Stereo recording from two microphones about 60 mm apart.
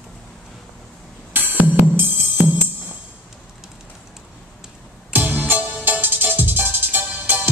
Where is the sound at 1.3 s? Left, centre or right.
Right.